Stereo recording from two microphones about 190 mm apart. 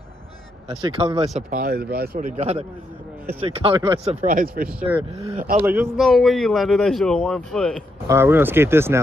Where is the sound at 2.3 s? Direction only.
35° right (ahead or behind).